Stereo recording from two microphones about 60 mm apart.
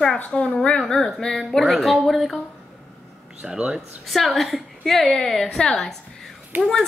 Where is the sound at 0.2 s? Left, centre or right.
Centre.